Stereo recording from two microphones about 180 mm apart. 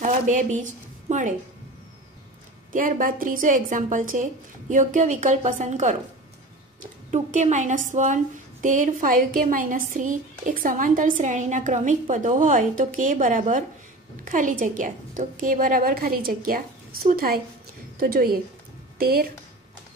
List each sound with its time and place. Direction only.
0.0 s a woman's voice: 45° right (ahead or behind)
2.7 s a woman's voice: 50° right (ahead or behind)